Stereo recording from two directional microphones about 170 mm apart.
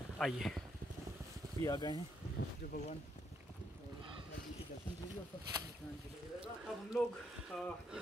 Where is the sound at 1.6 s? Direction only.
25° left (ahead or behind).